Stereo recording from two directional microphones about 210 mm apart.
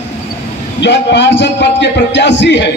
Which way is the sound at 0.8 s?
55° left (ahead or behind).